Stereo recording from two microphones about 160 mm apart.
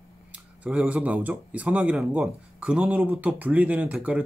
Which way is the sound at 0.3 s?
5° right (ahead or behind).